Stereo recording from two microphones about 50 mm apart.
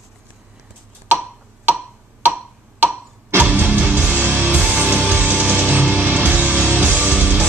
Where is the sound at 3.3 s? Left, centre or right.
Right.